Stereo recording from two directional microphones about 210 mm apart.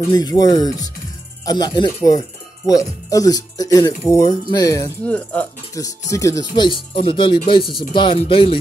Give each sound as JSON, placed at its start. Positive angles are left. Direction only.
{"t": 0.1, "sound": "speech", "side_deg": 20}